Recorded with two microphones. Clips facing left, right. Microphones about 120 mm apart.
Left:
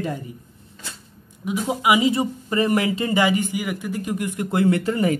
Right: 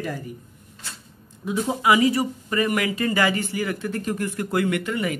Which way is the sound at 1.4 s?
15° left (ahead or behind).